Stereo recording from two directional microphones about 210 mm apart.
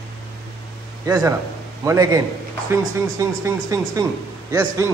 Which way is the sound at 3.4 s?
15° right (ahead or behind).